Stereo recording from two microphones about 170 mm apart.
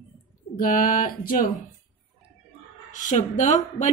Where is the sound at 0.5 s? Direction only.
55° left (ahead or behind).